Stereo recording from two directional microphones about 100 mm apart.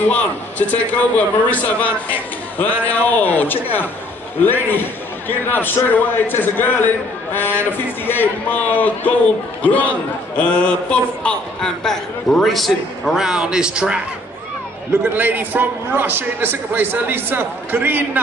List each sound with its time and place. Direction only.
0.1 s a man's voice: 15° left (ahead or behind); by 18.2 s 20° right (ahead or behind)